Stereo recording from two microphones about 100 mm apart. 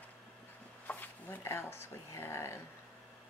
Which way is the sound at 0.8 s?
20° left (ahead or behind).